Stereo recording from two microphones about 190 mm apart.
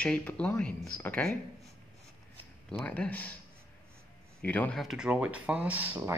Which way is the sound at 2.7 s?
5° left (ahead or behind).